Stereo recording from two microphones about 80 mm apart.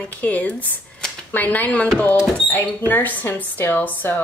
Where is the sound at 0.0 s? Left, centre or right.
Centre.